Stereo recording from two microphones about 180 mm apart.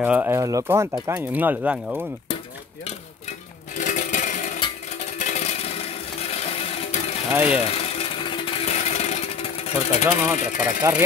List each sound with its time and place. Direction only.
0.0 s speech: 10° right (ahead or behind)
3.7 s music: 45° left (ahead or behind)
7.3 s speech: 10° right (ahead or behind)
7.6 s jackhammer: 35° left (ahead or behind)
10.3 s speech: 45° left (ahead or behind)
10.8 s speech: 15° right (ahead or behind)